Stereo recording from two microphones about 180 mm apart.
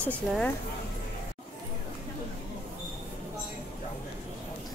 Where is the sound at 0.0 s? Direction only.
5° left (ahead or behind).